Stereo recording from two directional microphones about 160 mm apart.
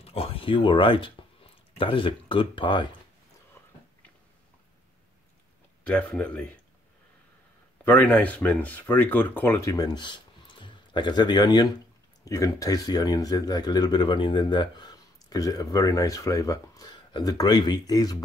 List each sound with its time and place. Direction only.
0.0 s speech: 35° left (ahead or behind)
5.9 s speech: 5° left (ahead or behind)
7.8 s speech: 10° left (ahead or behind)